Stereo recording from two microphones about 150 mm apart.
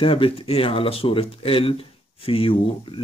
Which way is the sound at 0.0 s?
35° left (ahead or behind).